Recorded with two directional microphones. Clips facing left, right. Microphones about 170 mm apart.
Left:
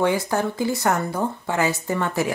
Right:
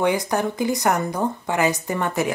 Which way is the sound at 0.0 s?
15° right (ahead or behind).